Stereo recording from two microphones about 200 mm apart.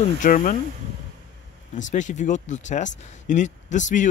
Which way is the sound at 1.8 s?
40° left (ahead or behind).